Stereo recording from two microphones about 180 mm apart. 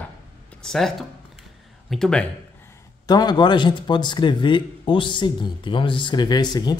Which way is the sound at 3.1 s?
25° left (ahead or behind).